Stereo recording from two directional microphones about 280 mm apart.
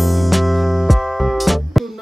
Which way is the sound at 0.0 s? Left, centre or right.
Centre.